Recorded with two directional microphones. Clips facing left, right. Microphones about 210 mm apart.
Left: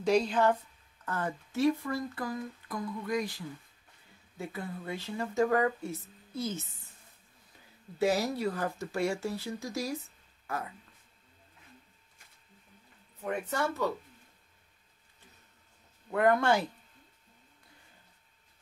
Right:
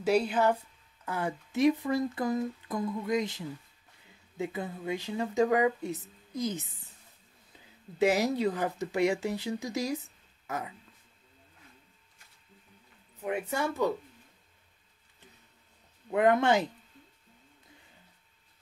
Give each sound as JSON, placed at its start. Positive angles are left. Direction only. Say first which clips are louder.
{"t": 0.0, "sound": "speech", "louder": "even", "side_deg": -5}
{"t": 8.0, "sound": "speech", "louder": "right 3 dB", "side_deg": -20}
{"t": 13.2, "sound": "speech", "louder": "right 1 dB", "side_deg": -10}
{"t": 16.1, "sound": "speech", "louder": "right 2 dB", "side_deg": -20}